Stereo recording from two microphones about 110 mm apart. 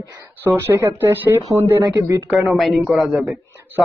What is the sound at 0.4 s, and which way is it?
Speech, 25° right (ahead or behind).